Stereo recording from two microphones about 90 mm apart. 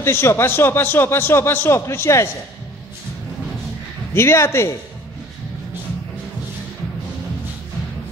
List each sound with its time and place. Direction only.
0.0 s a man's voice: 30° left (ahead or behind)
4.1 s a man's voice: 30° left (ahead or behind)